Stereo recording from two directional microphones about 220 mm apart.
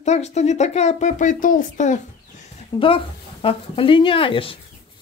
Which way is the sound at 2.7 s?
25° left (ahead or behind).